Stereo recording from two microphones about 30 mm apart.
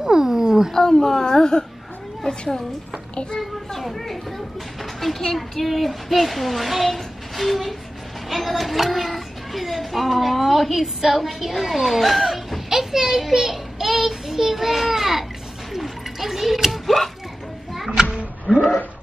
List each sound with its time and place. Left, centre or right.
0.0 s wild animals: centre
0.7 s speech: centre
3.3 s a child's voice: centre
5.3 s a child's voice: centre
12.6 s a sound: centre
13.3 s child singing: centre
15.7 s a sound: centre
17.7 s music: centre
18.5 s a sound: right